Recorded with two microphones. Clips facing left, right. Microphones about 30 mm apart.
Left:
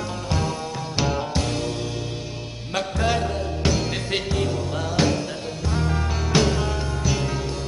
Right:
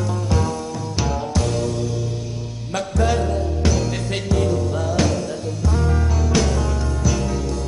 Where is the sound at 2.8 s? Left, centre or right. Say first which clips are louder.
Right 2 dB; left.